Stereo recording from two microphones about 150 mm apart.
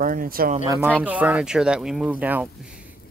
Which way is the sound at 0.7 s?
10° right (ahead or behind).